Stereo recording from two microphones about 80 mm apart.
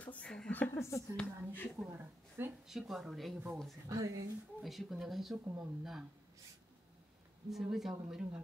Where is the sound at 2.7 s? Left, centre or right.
Centre.